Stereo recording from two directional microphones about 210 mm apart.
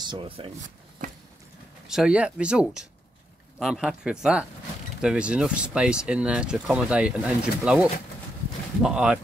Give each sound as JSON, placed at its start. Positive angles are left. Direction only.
{"t": 0.0, "sound": "speech", "side_deg": -25}
{"t": 1.9, "sound": "speech", "side_deg": -5}